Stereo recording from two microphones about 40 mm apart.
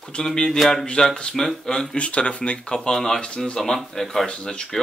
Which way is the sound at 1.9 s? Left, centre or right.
Left.